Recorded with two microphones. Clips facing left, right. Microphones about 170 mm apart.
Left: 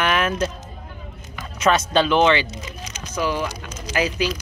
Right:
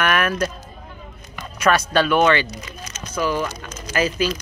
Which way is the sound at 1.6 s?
25° left (ahead or behind).